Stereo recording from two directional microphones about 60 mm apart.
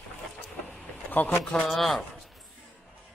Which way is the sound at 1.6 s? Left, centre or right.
Centre.